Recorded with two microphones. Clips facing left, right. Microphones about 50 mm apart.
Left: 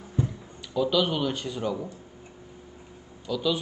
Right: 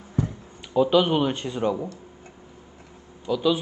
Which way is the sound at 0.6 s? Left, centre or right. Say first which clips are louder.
Right 5 dB; right.